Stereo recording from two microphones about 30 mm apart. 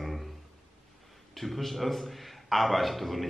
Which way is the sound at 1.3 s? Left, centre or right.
Centre.